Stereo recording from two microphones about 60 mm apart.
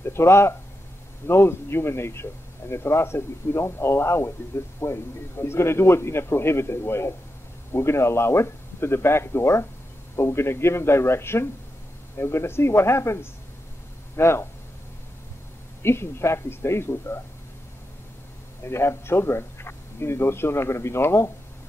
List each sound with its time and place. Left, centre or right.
0.0 s a man's voice: left
15.8 s a man's voice: left
18.6 s a man's voice: left